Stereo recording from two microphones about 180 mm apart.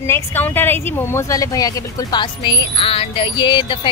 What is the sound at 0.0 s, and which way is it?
Speech, 15° left (ahead or behind).